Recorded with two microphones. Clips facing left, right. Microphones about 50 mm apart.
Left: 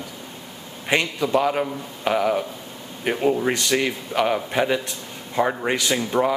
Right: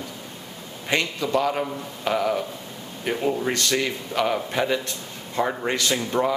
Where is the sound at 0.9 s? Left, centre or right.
Centre.